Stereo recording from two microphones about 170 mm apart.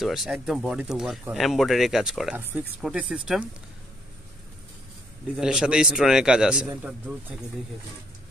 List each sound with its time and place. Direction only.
0.0 s speech: centre (ahead or behind)
5.4 s speech: 5° right (ahead or behind)